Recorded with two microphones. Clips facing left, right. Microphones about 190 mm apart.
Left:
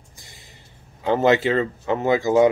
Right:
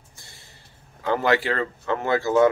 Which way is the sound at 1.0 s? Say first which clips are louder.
Left 4 dB; 20° left (ahead or behind).